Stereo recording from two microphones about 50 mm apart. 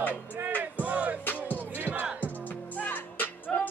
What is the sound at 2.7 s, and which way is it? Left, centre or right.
Music, left.